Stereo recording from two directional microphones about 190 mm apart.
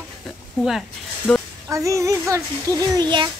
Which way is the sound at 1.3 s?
Centre (ahead or behind).